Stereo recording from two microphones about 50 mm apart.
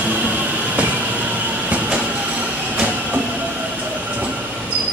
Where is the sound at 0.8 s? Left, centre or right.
Right.